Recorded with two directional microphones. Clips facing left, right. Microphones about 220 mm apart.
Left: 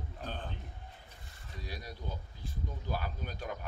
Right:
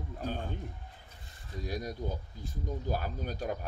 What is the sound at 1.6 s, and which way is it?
A man's voice, 45° right (ahead or behind).